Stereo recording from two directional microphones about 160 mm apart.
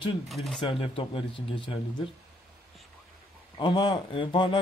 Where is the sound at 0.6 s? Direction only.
35° left (ahead or behind).